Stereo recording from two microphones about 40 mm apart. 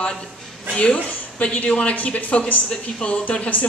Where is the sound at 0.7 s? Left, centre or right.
Left.